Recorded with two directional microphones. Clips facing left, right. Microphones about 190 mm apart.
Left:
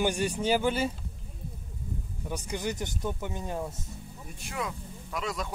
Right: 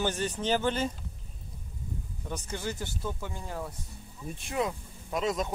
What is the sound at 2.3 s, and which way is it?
Speech, 15° left (ahead or behind).